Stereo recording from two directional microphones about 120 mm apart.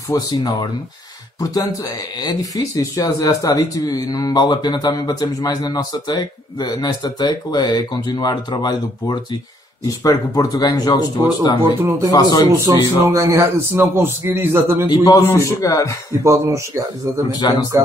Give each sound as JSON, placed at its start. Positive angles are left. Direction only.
{"t": 0.1, "sound": "a man's voice", "side_deg": 30}
{"t": 11.6, "sound": "speech", "side_deg": -20}
{"t": 12.1, "sound": "speech", "side_deg": 35}
{"t": 12.4, "sound": "a man's voice", "side_deg": -25}
{"t": 14.9, "sound": "a man's voice", "side_deg": 35}
{"t": 16.3, "sound": "a man's voice", "side_deg": -25}
{"t": 17.3, "sound": "speech", "side_deg": 35}